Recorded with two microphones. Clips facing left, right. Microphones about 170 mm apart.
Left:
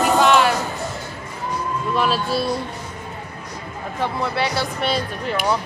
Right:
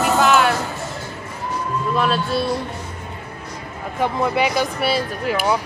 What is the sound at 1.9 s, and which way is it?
Speech, centre (ahead or behind).